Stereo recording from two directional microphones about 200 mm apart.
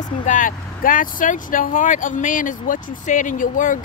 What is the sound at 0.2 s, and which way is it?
Speech, 40° left (ahead or behind).